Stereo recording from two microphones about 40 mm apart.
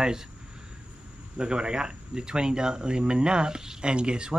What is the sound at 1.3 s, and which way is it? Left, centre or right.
Speech, right.